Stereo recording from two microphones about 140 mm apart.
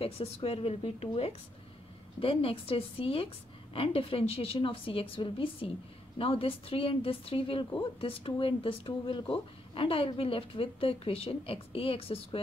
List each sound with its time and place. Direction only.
0.0 s a woman's voice: 45° left (ahead or behind)